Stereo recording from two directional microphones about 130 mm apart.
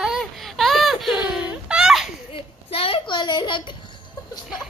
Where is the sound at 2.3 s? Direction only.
45° left (ahead or behind).